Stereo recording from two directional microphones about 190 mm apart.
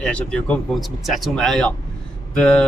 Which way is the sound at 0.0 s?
5° left (ahead or behind).